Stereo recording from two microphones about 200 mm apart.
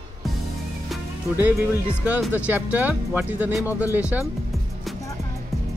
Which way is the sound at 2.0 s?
10° right (ahead or behind).